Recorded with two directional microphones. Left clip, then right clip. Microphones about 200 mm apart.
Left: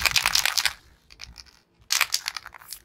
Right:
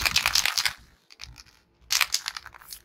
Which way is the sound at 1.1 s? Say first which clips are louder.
Left 1 dB; 20° left (ahead or behind).